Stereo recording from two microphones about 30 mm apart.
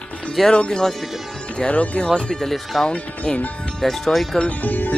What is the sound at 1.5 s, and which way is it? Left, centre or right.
Speech, left.